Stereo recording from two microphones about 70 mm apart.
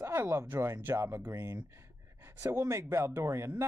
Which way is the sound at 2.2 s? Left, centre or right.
Right.